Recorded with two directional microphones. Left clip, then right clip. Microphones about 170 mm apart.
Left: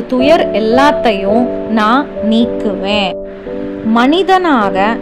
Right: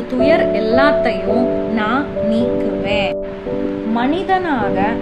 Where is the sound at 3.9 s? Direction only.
60° left (ahead or behind).